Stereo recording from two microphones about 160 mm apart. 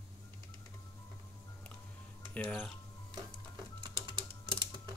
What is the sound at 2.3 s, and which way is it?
Speech, 5° left (ahead or behind).